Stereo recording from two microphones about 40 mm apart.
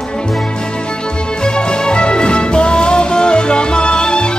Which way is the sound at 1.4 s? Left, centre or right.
Left.